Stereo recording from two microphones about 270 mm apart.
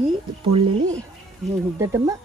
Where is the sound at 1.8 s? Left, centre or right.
Centre.